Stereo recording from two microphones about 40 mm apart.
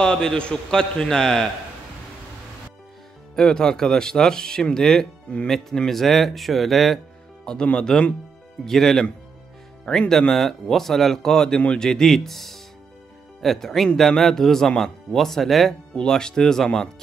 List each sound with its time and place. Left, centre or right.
0.0 s a man's voice: centre
3.3 s speech: centre
5.3 s a man's voice: left
5.8 s speech: centre
15.9 s speech: left